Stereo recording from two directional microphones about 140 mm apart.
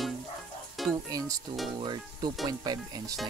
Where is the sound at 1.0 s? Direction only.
25° right (ahead or behind).